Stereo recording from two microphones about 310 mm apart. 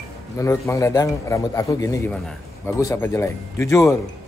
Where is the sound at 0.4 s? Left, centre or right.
Centre.